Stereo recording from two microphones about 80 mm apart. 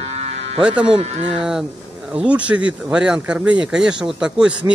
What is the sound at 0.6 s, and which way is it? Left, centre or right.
A man's voice, centre.